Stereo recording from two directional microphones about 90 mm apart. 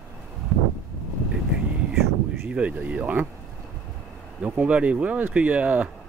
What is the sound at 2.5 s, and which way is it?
Speech, 15° right (ahead or behind).